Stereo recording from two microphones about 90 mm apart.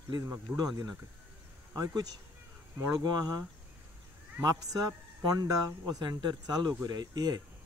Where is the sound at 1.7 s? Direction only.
45° right (ahead or behind).